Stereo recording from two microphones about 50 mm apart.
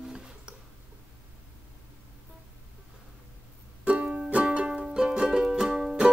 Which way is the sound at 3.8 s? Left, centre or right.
Right.